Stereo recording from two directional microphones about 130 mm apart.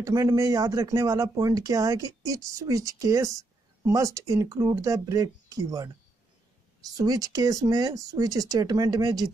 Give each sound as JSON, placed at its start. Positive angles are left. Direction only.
{"t": 0.0, "sound": "speech", "side_deg": -25}
{"t": 7.0, "sound": "speech", "side_deg": -30}